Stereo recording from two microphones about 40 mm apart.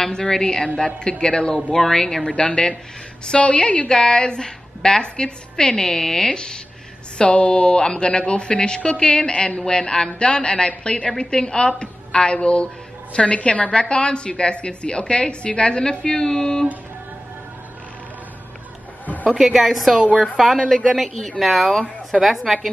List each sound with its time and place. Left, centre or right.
0.0 s a woman's voice: centre
1.7 s speech: centre
2.2 s a woman's voice: left
19.3 s a woman's voice: centre
20.5 s speech: centre
20.8 s a woman's voice: centre